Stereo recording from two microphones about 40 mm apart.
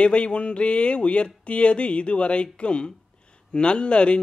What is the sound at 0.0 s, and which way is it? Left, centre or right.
Speech, left.